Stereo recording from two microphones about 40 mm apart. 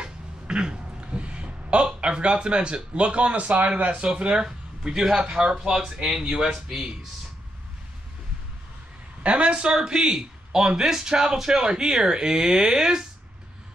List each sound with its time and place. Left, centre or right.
0.0 s speech: right
4.5 s speech: centre
5.2 s speech: right
9.2 s speech: right